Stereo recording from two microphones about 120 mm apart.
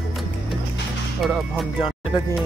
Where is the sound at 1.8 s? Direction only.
50° left (ahead or behind).